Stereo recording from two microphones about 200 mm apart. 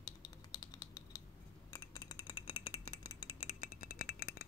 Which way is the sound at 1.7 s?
20° left (ahead or behind).